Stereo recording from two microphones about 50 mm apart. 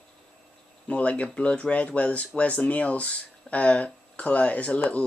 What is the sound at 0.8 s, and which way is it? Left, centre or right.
Speech, left.